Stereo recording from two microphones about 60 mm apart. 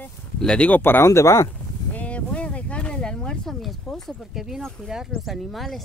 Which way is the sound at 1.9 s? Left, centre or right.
Left.